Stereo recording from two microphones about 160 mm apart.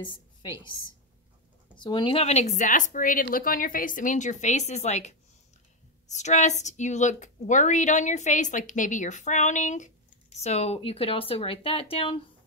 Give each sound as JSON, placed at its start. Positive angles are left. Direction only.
{"t": 1.8, "sound": "a woman's voice", "side_deg": 30}